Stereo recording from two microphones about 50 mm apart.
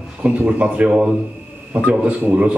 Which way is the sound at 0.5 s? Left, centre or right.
Right.